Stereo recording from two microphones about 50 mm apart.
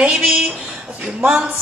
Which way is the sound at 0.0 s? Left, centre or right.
Centre.